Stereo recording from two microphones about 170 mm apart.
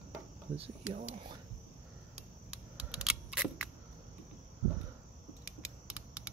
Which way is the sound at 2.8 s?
5° right (ahead or behind).